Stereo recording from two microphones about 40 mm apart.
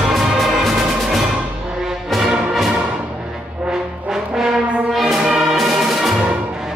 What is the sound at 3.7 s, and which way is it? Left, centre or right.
Brass instrument, centre.